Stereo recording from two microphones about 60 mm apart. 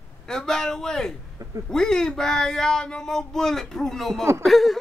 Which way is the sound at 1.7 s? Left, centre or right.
Centre.